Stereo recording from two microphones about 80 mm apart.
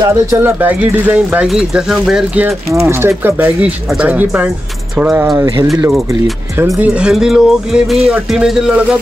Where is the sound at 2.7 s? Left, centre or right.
Right; by 5.2 s centre.